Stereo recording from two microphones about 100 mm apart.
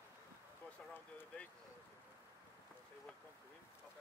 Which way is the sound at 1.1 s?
15° left (ahead or behind).